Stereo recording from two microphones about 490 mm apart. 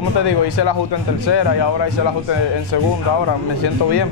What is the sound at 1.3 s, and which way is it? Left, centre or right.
Speech, left.